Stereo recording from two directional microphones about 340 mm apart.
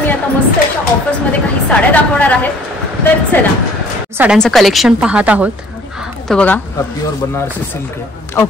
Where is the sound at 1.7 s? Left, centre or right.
Centre.